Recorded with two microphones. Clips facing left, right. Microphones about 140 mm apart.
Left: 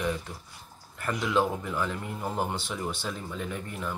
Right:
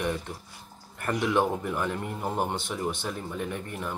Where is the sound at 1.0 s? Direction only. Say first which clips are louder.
Right 2 dB; 20° right (ahead or behind).